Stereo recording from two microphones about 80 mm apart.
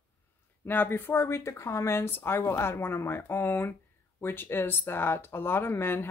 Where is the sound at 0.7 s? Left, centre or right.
Left.